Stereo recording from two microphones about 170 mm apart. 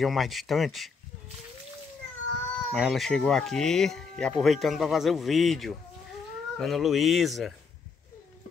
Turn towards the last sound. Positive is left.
turn(degrees=0)  # may be behind; listen again after turning